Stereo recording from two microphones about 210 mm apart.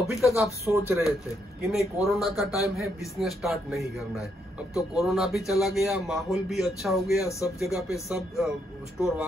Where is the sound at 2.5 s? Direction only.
15° left (ahead or behind).